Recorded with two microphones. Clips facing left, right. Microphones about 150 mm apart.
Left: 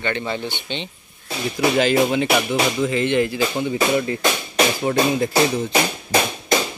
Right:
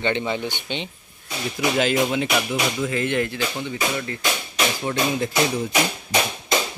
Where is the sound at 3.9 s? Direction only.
20° left (ahead or behind).